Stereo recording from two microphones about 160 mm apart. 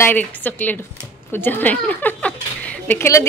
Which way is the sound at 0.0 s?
10° left (ahead or behind).